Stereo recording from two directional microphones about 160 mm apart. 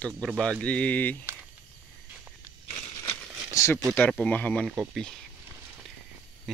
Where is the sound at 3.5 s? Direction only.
15° left (ahead or behind).